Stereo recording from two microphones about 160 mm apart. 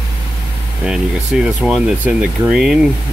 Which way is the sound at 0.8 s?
5° right (ahead or behind).